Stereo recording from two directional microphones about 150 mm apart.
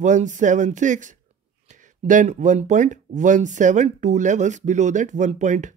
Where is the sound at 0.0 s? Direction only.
55° right (ahead or behind).